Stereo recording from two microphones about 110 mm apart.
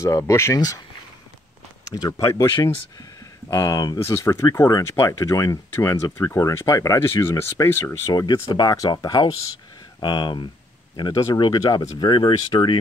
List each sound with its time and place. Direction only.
0.3 s speech: 25° left (ahead or behind)
1.9 s speech: 35° left (ahead or behind)
8.1 s speech: 40° left (ahead or behind)